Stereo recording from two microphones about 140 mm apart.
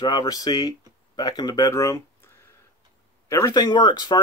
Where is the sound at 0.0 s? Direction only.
30° left (ahead or behind).